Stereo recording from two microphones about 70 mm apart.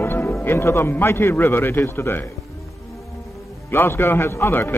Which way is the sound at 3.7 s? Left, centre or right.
Left.